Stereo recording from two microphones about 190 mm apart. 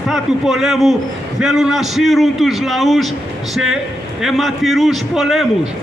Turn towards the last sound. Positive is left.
turn(degrees=0)  # may be behind; listen again after turning